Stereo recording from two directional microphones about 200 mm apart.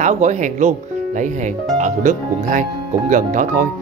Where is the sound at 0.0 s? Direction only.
35° right (ahead or behind).